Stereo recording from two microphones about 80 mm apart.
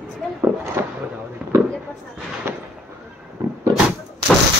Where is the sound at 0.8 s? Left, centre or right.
Right.